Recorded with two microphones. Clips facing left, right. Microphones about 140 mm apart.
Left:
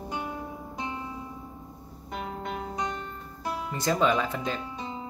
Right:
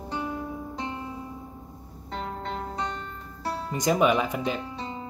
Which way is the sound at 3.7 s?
15° right (ahead or behind).